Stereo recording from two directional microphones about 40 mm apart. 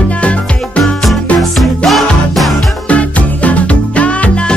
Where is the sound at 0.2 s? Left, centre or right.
Left.